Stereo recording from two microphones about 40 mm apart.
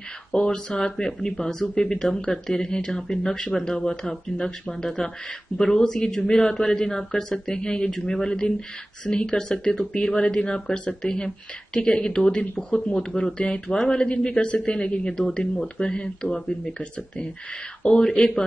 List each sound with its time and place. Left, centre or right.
0.3 s a man's voice: left
15.1 s speech: centre
18.0 s a man's voice: centre